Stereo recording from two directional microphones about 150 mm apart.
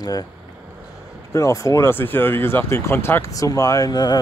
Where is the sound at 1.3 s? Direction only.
20° left (ahead or behind).